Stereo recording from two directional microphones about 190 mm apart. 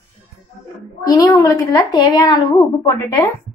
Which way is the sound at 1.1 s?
20° left (ahead or behind).